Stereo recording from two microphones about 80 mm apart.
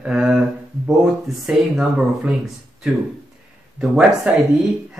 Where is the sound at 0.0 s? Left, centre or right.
Centre.